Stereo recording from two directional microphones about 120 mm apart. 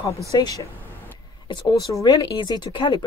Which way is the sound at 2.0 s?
35° left (ahead or behind).